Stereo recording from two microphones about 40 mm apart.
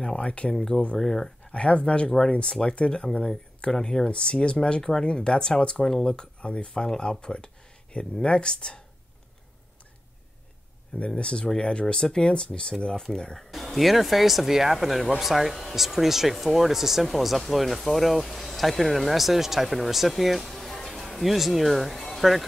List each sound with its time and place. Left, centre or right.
0.0 s speech: left
0.9 s speech: centre
1.5 s speech: left
3.7 s speech: centre
4.1 s speech: left
11.1 s speech: left
13.4 s speech: centre